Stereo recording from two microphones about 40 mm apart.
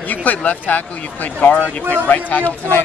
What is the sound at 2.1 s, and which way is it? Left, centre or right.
Speech, left.